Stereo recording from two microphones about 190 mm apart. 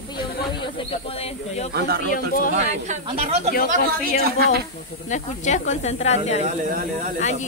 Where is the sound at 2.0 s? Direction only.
45° left (ahead or behind).